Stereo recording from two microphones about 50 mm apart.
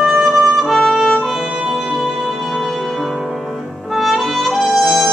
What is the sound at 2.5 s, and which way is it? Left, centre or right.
Music, centre.